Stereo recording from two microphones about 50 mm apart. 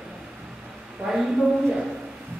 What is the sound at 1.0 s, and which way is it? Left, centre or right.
Speech, centre.